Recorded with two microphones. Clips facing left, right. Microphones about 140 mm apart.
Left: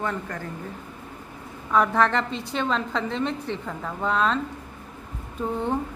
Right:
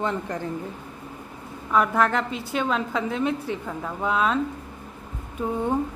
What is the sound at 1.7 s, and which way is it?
A woman's voice, 5° right (ahead or behind).